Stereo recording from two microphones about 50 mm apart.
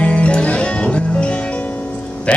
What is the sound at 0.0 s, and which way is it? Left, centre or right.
Music, left.